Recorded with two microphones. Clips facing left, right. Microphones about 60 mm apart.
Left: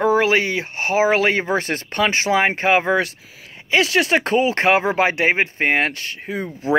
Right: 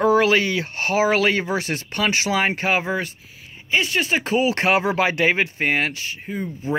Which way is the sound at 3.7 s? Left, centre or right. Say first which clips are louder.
Left 4 dB; left.